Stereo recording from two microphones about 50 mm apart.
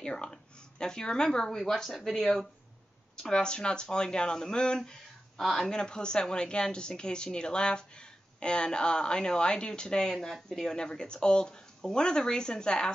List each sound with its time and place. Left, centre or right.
0.0 s a woman's voice: centre